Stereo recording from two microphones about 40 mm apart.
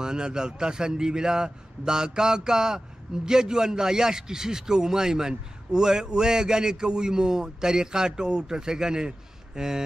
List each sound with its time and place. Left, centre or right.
0.0 s speech: centre